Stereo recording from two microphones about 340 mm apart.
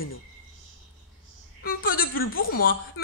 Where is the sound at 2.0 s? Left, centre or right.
Left.